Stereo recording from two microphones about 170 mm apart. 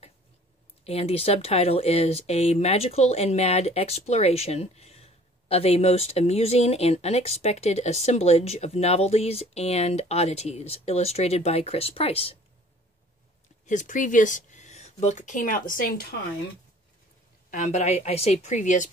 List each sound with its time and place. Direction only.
0.8 s speech: 35° left (ahead or behind)
13.7 s speech: 50° left (ahead or behind); by 16.1 s 65° left (ahead or behind)
17.5 s speech: 40° left (ahead or behind)